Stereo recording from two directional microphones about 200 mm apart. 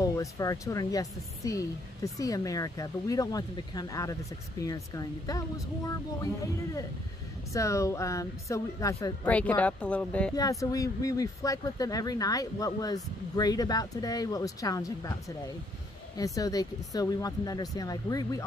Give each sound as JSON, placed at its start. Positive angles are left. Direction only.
{"t": 0.0, "sound": "speech", "side_deg": 15}
{"t": 6.4, "sound": "speech", "side_deg": 15}
{"t": 10.3, "sound": "speech", "side_deg": 15}